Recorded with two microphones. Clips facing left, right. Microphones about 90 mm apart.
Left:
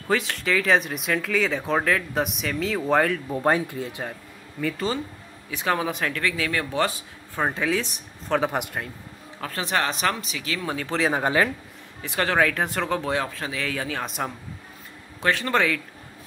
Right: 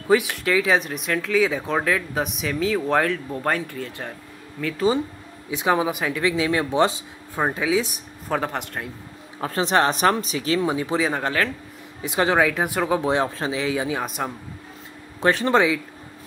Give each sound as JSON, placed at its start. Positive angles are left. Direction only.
{"t": 0.1, "sound": "speech", "side_deg": -10}
{"t": 3.3, "sound": "speech", "side_deg": 20}
{"t": 4.6, "sound": "speech", "side_deg": 0}
{"t": 5.5, "sound": "speech", "side_deg": -15}
{"t": 7.4, "sound": "speech", "side_deg": -10}
{"t": 9.4, "sound": "speech", "side_deg": -25}
{"t": 10.7, "sound": "speech", "side_deg": -15}
{"t": 11.0, "sound": "speech", "side_deg": 5}
{"t": 11.2, "sound": "speech", "side_deg": 15}
{"t": 12.0, "sound": "speech", "side_deg": -15}
{"t": 13.1, "sound": "speech", "side_deg": -25}
{"t": 14.0, "sound": "speech", "side_deg": 0}
{"t": 15.1, "sound": "speech", "side_deg": -25}